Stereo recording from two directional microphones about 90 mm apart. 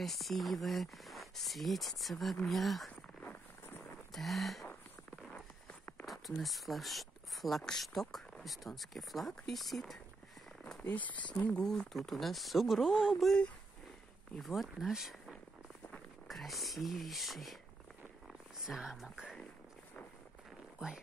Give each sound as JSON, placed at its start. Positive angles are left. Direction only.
{"t": 0.0, "sound": "speech", "side_deg": 0}
{"t": 4.1, "sound": "speech", "side_deg": 0}
{"t": 5.7, "sound": "walk", "side_deg": 15}
{"t": 6.0, "sound": "speech", "side_deg": 0}
{"t": 10.8, "sound": "speech", "side_deg": 20}
{"t": 11.6, "sound": "speech", "side_deg": 5}
{"t": 14.4, "sound": "speech", "side_deg": 0}
{"t": 18.7, "sound": "speech", "side_deg": -5}